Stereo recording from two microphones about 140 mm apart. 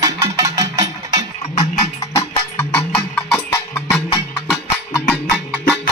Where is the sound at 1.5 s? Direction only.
50° left (ahead or behind).